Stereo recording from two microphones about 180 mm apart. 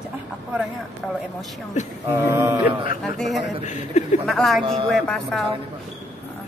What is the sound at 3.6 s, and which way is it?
Speech, 40° left (ahead or behind).